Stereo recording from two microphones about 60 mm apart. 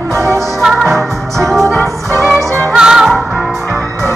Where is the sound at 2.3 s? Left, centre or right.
Right.